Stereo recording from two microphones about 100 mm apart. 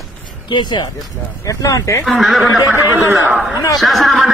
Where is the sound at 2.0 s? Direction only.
Centre (ahead or behind).